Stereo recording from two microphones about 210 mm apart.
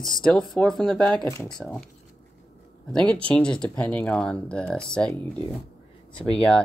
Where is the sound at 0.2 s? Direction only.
5° left (ahead or behind).